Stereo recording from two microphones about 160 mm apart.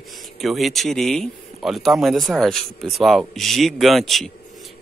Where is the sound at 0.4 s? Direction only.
Centre (ahead or behind).